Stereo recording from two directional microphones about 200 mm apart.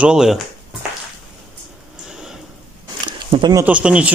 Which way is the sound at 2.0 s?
5° right (ahead or behind).